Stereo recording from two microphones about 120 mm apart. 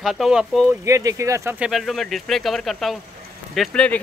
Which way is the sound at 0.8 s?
25° right (ahead or behind).